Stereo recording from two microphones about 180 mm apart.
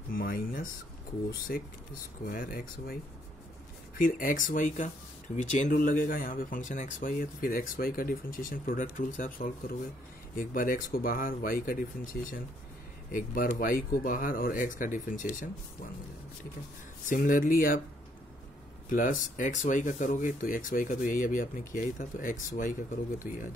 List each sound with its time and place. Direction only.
0.1 s speech: 55° left (ahead or behind)
2.2 s speech: 55° left (ahead or behind)
4.0 s speech: 50° left (ahead or behind)
17.1 s speech: 50° left (ahead or behind)
18.9 s speech: 50° left (ahead or behind)